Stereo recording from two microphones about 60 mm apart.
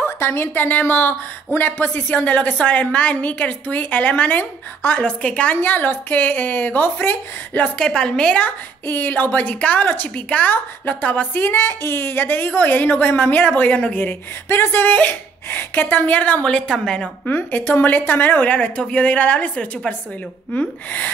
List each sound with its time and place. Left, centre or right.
0.0 s speech: left; by 5.6 s centre
5.6 s speech: left
7.8 s a woman's voice: centre
8.4 s speech: left; by 17.1 s centre
17.3 s speech: left
19.5 s a woman's voice: centre
20.5 s speech: left